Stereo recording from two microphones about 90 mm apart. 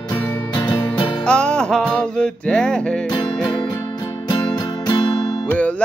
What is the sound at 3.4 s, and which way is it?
Music, 55° left (ahead or behind).